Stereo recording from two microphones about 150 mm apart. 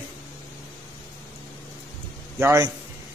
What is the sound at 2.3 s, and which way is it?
Speech, 20° right (ahead or behind).